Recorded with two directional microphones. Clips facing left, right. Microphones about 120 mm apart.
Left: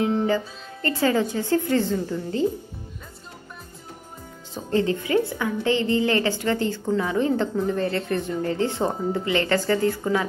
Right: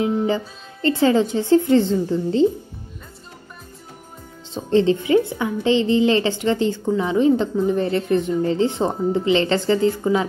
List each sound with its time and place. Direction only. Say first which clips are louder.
0.8 s a woman's voice: right 5 dB; 20° right (ahead or behind)
4.6 s a woman's voice: right 6 dB; 25° right (ahead or behind)